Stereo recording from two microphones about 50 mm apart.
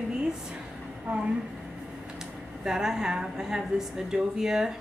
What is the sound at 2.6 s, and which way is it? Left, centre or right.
A woman's voice, centre.